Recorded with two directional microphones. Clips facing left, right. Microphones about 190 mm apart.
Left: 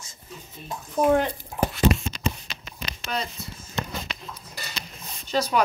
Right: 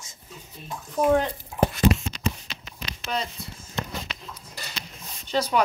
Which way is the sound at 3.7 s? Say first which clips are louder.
Left 1 dB; 45° left (ahead or behind).